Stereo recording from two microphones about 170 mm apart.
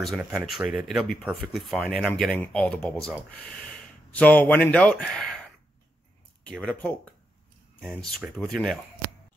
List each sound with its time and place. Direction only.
0.0 s speech: 5° right (ahead or behind)
6.4 s speech: 5° left (ahead or behind)